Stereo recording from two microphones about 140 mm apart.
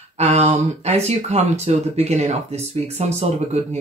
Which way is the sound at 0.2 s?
50° right (ahead or behind).